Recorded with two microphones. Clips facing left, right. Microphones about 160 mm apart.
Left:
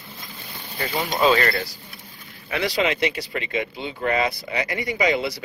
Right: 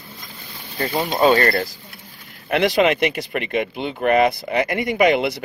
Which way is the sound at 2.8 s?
60° right (ahead or behind).